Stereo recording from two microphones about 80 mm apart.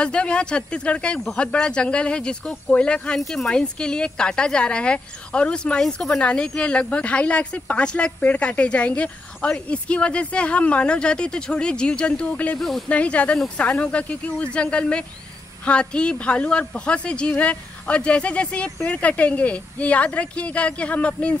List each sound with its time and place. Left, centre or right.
0.0 s speech: centre
12.5 s speech: centre
12.8 s speech: centre